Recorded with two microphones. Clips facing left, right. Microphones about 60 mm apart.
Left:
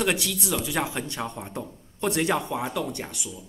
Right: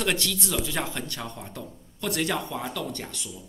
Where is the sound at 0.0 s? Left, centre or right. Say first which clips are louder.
Left 2 dB; centre.